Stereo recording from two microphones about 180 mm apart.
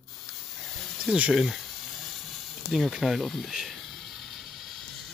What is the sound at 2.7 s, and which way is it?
Snake, centre (ahead or behind).